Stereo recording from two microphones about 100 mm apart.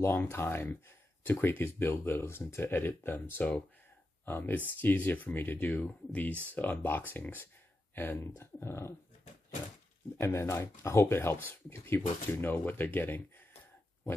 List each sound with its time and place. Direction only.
0.0 s speech: 25° left (ahead or behind)
10.2 s speech: 30° left (ahead or behind)